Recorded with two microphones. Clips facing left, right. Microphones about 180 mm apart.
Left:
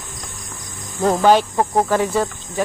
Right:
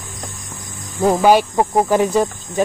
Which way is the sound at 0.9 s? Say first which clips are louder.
Right 1 dB; 10° right (ahead or behind).